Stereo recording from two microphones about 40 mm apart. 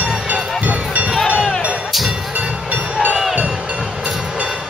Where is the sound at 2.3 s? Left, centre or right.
Right.